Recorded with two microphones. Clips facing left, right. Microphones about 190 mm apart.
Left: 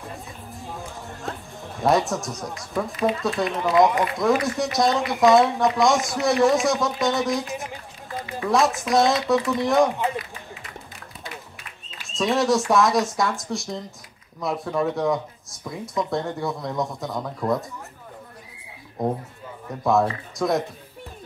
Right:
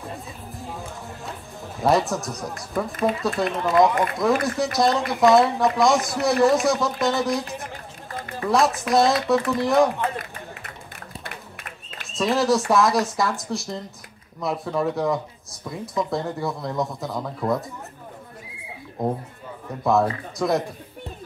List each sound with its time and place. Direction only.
0.7 s music: centre (ahead or behind)
3.2 s speech: centre (ahead or behind)
10.1 s run: 55° right (ahead or behind)
12.2 s speech: centre (ahead or behind)
19.7 s speech: centre (ahead or behind)